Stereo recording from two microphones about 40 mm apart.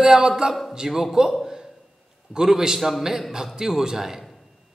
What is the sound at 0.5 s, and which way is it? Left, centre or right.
Speech, centre.